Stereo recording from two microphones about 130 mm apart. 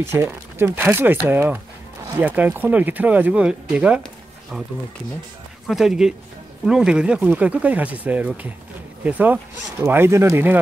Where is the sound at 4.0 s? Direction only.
Centre (ahead or behind).